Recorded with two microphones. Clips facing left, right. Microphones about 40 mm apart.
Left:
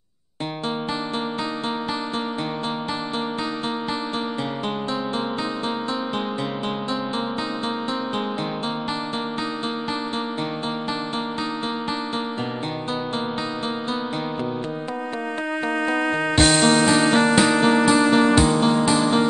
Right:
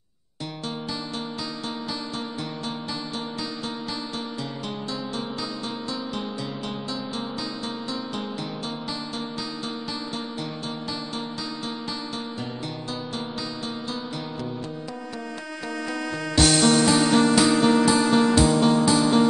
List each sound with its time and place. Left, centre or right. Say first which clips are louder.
15.7 s music: left 7 dB; left